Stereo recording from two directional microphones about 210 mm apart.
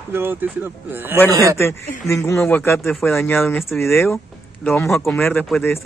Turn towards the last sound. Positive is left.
turn(degrees=5)  # may be behind; listen again after turning